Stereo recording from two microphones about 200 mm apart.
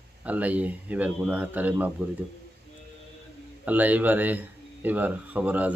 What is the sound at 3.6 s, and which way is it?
Speech, 10° right (ahead or behind).